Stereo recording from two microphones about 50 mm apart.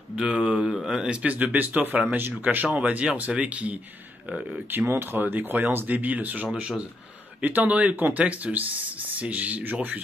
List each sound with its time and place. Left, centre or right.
0.1 s speech: centre
4.9 s speech: right